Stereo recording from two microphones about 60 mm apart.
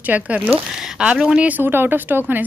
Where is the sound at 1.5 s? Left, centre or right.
Right.